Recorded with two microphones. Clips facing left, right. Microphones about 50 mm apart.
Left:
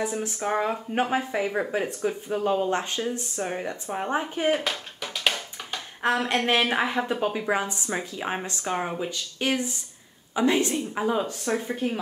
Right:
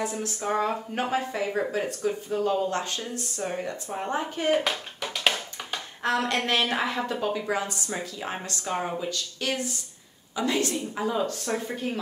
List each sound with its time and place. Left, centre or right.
0.0 s a woman's voice: centre
4.6 s clapping: centre
6.0 s a woman's voice: left